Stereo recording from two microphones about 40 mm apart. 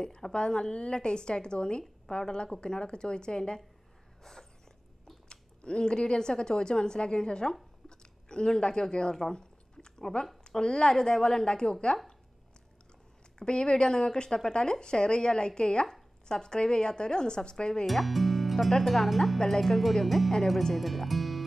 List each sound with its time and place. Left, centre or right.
0.0 s a woman's voice: left
4.2 s a sound: centre
5.3 s a woman's voice: left
7.9 s chewing: centre
9.1 s a sound: centre
10.6 s a woman's voice: left
13.4 s a woman's voice: left
17.8 s speech: centre